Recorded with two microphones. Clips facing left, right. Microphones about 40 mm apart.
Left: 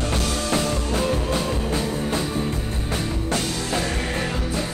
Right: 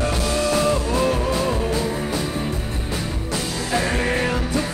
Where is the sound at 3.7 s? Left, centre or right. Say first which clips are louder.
Right 7 dB; right.